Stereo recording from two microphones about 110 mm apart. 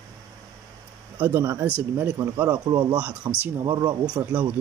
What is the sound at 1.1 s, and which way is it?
Speech, 20° right (ahead or behind).